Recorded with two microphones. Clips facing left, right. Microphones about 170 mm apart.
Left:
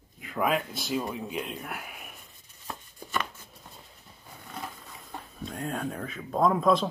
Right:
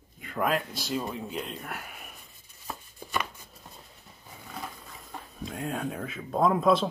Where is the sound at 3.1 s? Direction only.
5° right (ahead or behind).